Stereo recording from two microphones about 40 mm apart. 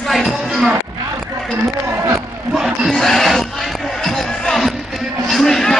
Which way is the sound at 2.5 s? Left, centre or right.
Centre.